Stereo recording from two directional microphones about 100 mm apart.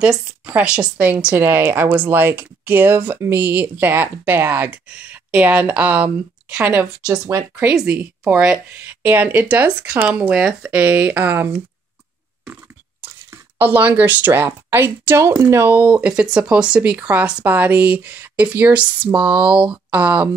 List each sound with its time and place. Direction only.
0.5 s speech: 15° right (ahead or behind)
13.0 s speech: 20° right (ahead or behind)